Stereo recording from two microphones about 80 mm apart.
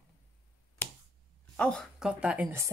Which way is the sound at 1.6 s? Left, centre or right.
Centre.